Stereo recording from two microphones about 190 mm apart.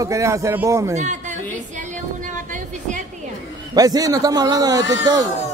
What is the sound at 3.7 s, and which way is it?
A man's voice, 20° right (ahead or behind).